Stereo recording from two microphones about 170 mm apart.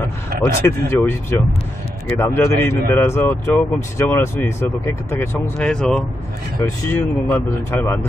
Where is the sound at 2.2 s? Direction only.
15° left (ahead or behind).